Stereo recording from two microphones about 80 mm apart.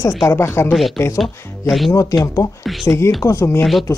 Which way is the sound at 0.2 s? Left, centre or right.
Left.